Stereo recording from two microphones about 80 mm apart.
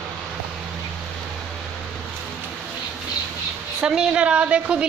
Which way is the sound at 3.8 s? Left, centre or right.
Centre.